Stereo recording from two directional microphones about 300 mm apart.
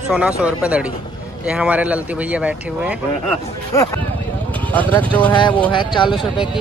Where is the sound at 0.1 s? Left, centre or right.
Centre.